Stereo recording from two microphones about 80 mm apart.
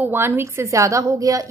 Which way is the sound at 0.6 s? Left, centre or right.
Right.